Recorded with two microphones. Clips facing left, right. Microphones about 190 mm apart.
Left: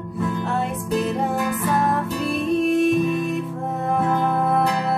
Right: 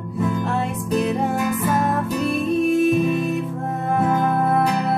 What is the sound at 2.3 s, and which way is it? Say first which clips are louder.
Music: even; centre (ahead or behind).